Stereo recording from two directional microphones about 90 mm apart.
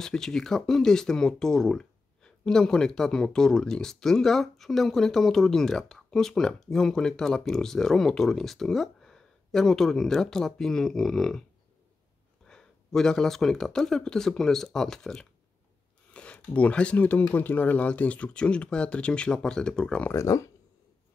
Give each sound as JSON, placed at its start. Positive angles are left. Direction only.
{"t": 0.0, "sound": "speech", "side_deg": 5}
{"t": 12.4, "sound": "speech", "side_deg": 5}
{"t": 20.1, "sound": "speech", "side_deg": 35}